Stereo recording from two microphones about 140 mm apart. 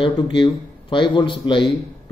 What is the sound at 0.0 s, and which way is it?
Speech, 35° left (ahead or behind).